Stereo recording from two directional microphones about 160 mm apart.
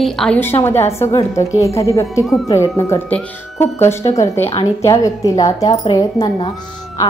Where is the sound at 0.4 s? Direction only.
15° left (ahead or behind).